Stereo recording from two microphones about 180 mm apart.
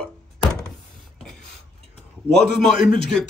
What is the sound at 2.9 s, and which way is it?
Speech, 5° left (ahead or behind).